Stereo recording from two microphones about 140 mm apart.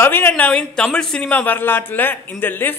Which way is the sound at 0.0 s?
15° left (ahead or behind).